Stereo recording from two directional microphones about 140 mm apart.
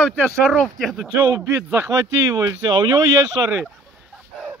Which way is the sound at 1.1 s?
15° right (ahead or behind).